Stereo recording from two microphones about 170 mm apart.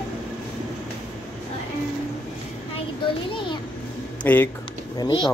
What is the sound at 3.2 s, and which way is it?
Speech, 30° left (ahead or behind).